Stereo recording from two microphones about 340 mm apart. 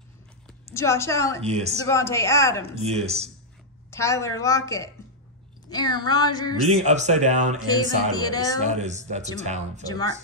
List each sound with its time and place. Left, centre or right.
0.7 s a woman's voice: centre
1.4 s speech: centre
1.9 s a woman's voice: centre
2.8 s speech: centre
3.9 s a woman's voice: centre
6.7 s speech: centre
7.6 s a woman's voice: centre
8.8 s speech: right
9.8 s a woman's voice: centre